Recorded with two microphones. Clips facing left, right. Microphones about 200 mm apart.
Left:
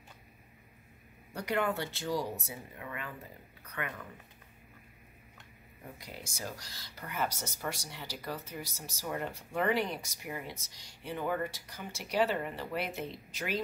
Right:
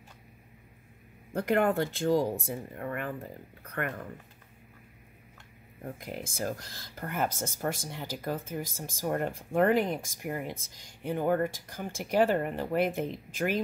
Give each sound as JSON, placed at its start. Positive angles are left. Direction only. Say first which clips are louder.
{"t": 1.3, "sound": "speech", "louder": "right 6 dB", "side_deg": -50}
{"t": 5.9, "sound": "speech", "louder": "right 8 dB", "side_deg": -50}